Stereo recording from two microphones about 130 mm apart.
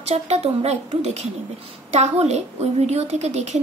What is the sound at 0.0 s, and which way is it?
A woman's voice, 55° right (ahead or behind).